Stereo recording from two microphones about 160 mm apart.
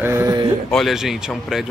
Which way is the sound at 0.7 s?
Centre (ahead or behind).